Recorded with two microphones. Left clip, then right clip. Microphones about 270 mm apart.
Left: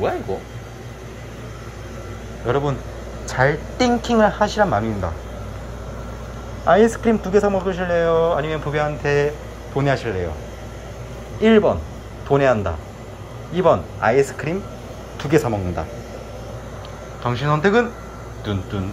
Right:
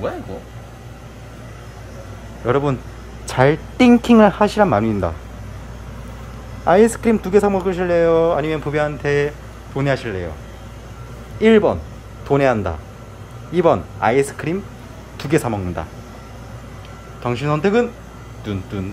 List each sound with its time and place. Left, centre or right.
2.4 s a woman's voice: centre
3.7 s speech: right
4.2 s speech: right
6.6 s speech: right
11.4 s speech: centre
17.2 s speech: right